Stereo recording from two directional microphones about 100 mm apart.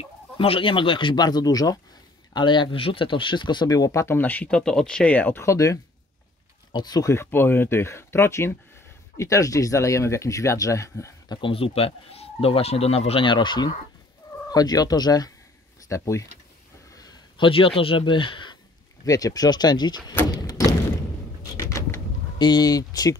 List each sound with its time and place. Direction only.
0.0 s speech: 65° left (ahead or behind); by 1.8 s 40° left (ahead or behind)
2.3 s speech: 50° left (ahead or behind); by 5.8 s 30° left (ahead or behind)
6.7 s speech: 40° left (ahead or behind)
7.1 s speech: 25° left (ahead or behind)
11.2 s speech: 60° left (ahead or behind)
14.5 s speech: 40° left (ahead or behind)
16.9 s a sound: 40° left (ahead or behind)
17.4 s speech: 65° left (ahead or behind)
19.0 s speech: 35° left (ahead or behind)
20.3 s a sound: 40° left (ahead or behind)
21.5 s pigeon: 35° left (ahead or behind)
22.4 s speech: 45° left (ahead or behind)